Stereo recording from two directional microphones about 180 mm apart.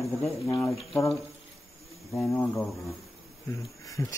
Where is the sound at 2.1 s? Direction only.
10° left (ahead or behind).